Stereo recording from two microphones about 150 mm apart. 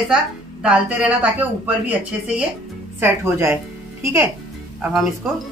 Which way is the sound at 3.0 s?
15° right (ahead or behind).